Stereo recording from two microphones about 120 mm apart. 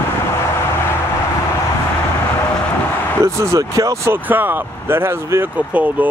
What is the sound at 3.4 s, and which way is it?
Speech, 30° right (ahead or behind).